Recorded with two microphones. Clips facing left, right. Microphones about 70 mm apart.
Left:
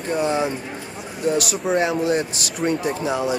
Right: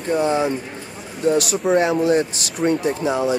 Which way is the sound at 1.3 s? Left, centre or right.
Right.